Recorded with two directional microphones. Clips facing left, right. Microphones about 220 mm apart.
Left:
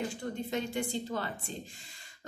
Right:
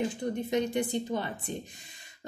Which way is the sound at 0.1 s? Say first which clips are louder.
Right 5 dB; 20° right (ahead or behind).